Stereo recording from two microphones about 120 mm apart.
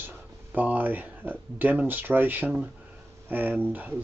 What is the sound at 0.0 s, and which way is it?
Speech, 15° right (ahead or behind).